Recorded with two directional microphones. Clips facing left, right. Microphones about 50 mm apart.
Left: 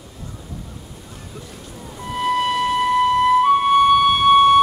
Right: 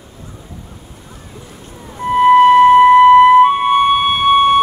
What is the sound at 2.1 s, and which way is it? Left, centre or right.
Music, right.